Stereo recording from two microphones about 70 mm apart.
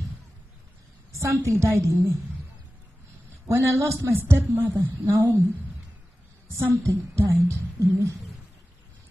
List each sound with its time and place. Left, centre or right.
1.1 s speech: right
3.4 s a woman's voice: right
6.9 s speech: right